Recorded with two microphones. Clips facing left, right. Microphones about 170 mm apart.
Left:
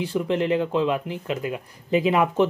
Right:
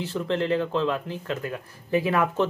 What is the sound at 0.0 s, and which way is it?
Speech, 15° left (ahead or behind).